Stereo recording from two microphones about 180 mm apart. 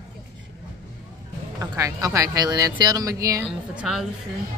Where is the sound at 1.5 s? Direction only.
20° right (ahead or behind).